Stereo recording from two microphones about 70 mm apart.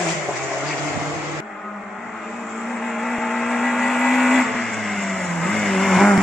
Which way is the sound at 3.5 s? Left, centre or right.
Centre.